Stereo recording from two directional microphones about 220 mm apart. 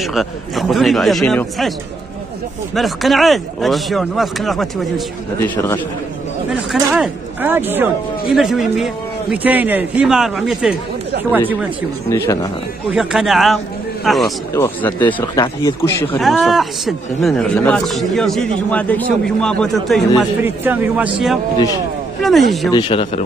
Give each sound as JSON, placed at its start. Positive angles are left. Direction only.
{"t": 0.0, "sound": "a man's voice", "side_deg": 0}
{"t": 2.7, "sound": "a man's voice", "side_deg": 0}
{"t": 5.4, "sound": "speech", "side_deg": 10}
{"t": 6.5, "sound": "a man's voice", "side_deg": 0}
{"t": 12.9, "sound": "a man's voice", "side_deg": 0}
{"t": 16.2, "sound": "a man's voice", "side_deg": 0}
{"t": 22.7, "sound": "speech", "side_deg": 20}